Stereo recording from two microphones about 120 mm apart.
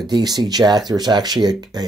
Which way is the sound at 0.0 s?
35° right (ahead or behind).